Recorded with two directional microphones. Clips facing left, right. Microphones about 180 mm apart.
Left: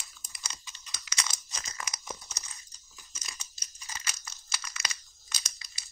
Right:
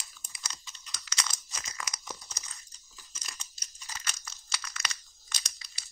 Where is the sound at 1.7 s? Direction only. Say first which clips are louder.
Left 1 dB; 25° left (ahead or behind).